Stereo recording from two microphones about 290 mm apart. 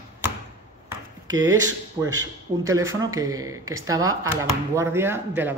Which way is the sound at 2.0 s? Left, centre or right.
Centre.